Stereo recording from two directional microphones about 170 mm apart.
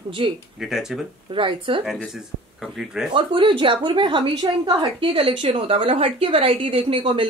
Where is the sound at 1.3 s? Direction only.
30° right (ahead or behind).